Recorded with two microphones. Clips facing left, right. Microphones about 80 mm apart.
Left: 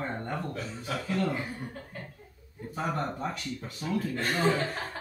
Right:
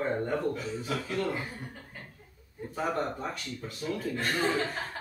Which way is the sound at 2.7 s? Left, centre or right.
Centre.